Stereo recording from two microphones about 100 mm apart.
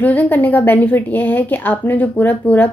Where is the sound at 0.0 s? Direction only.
15° left (ahead or behind).